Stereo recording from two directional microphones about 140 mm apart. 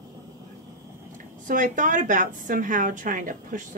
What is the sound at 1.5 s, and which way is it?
A woman's voice, 70° right (ahead or behind).